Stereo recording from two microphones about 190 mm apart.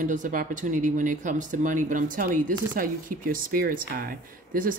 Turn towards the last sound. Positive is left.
turn(degrees=-45)  # may be behind; listen again after turning